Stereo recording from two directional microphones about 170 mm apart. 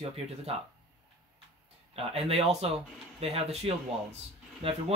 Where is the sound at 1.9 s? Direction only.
35° right (ahead or behind).